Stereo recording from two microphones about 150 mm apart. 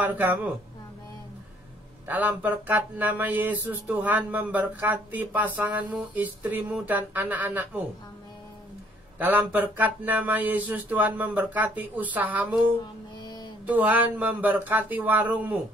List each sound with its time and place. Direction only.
0.0 s speech: 10° right (ahead or behind)
2.0 s speech: 10° right (ahead or behind)
9.2 s speech: 10° right (ahead or behind)